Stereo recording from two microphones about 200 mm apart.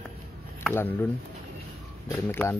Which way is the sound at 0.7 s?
10° left (ahead or behind).